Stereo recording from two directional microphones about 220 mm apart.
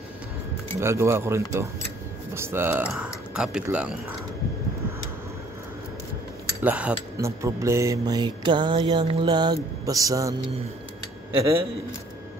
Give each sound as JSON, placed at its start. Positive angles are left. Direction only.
{"t": 0.7, "sound": "speech", "side_deg": -10}
{"t": 6.6, "sound": "speech", "side_deg": -5}